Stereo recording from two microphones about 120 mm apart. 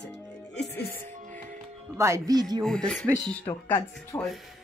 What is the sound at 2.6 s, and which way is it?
Speech, 5° left (ahead or behind).